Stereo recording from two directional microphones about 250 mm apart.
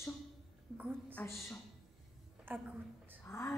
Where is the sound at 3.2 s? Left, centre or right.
Centre.